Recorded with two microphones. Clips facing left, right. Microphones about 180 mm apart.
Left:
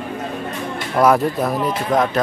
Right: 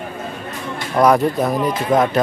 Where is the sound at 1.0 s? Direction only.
Centre (ahead or behind).